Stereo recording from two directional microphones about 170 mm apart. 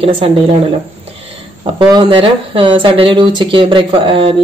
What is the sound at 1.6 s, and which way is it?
Speech, 30° right (ahead or behind).